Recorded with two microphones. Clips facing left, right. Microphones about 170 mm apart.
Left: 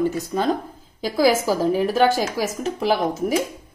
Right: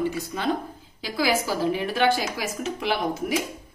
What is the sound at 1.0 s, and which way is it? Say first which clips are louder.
A woman's voice: left 6 dB; 45° left (ahead or behind).